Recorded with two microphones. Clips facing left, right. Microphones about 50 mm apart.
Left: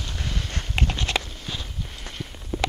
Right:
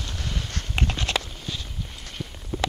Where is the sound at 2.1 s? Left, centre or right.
Centre.